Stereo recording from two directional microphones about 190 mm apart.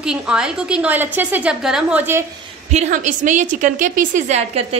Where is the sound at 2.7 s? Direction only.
40° right (ahead or behind).